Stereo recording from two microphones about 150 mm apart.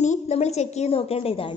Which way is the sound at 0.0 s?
50° left (ahead or behind).